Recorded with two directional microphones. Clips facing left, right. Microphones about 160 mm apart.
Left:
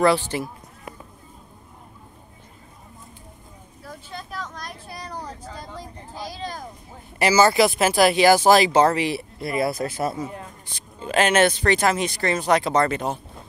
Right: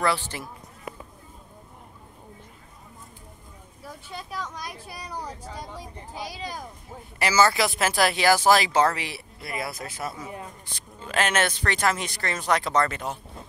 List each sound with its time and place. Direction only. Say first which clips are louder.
0.0 s speech: left 7 dB; 20° left (ahead or behind)
4.1 s vehicle: even; 10° right (ahead or behind)
7.2 s speech: left 5 dB; 15° left (ahead or behind)
9.4 s speech: left 9 dB; 30° left (ahead or behind)
11.0 s speech: left 6 dB; 20° left (ahead or behind)
12.7 s speech: left 4 dB; 30° left (ahead or behind)